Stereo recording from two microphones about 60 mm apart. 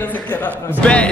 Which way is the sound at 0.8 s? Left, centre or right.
Centre.